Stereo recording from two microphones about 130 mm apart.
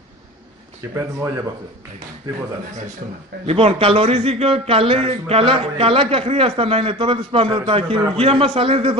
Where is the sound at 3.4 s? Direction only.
50° right (ahead or behind).